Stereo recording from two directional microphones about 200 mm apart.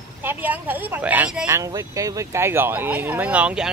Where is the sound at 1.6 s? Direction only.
15° right (ahead or behind).